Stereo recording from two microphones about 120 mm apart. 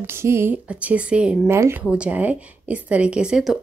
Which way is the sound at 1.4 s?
20° right (ahead or behind).